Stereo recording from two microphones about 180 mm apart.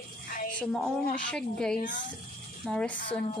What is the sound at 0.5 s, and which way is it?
A woman's voice, 5° left (ahead or behind).